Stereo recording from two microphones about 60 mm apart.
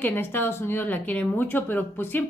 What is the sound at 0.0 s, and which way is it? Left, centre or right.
A woman's voice, left.